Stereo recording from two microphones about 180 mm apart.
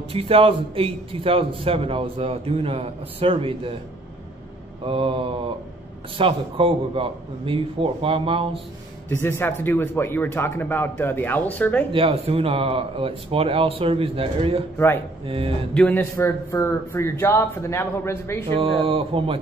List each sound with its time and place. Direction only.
0.1 s a man's voice: 30° right (ahead or behind)
4.8 s a man's voice: 30° right (ahead or behind)
9.1 s speech: 15° left (ahead or behind)
11.9 s a man's voice: 30° right (ahead or behind)
15.7 s speech: 10° left (ahead or behind)
18.6 s a man's voice: 30° right (ahead or behind)